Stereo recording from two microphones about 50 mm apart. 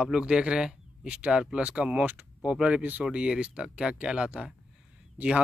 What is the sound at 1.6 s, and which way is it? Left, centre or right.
Speech, right.